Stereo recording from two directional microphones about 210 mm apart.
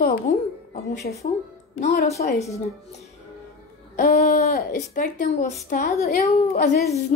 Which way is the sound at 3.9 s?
40° left (ahead or behind).